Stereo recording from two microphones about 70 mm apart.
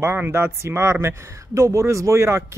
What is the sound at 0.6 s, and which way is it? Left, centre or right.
Speech, right.